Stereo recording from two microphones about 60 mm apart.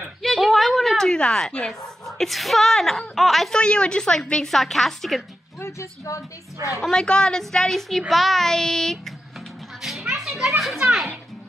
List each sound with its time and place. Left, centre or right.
0.2 s a sound: centre
2.0 s speech: centre
3.5 s a woman's voice: centre
5.6 s a woman's voice: left
6.8 s a woman's voice: centre
9.8 s children playing: centre
10.8 s a child's voice: centre